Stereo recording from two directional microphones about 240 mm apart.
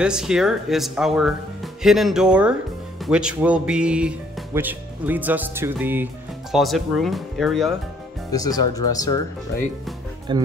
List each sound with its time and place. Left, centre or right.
0.0 s speech: centre
8.3 s speech: centre
10.3 s speech: centre